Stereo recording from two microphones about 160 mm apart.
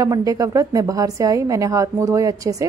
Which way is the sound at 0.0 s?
20° right (ahead or behind).